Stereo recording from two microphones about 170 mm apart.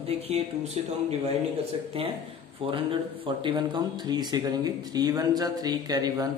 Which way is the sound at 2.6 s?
30° right (ahead or behind).